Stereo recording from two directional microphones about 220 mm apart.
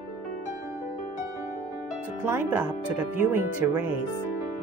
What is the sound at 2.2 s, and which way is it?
Speech, 10° right (ahead or behind).